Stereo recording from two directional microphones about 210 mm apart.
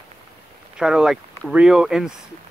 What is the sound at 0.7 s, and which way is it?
Speech, 5° right (ahead or behind).